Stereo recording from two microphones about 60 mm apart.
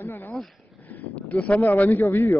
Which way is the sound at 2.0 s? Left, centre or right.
Left.